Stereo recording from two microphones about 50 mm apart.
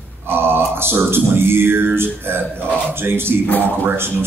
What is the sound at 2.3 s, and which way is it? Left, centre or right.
Speech, right.